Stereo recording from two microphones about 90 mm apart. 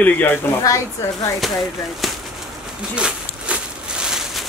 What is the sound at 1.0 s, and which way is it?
Speech, 35° left (ahead or behind).